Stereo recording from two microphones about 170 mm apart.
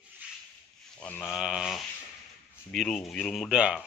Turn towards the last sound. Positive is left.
turn(degrees=-5)  # may be behind; listen again after turning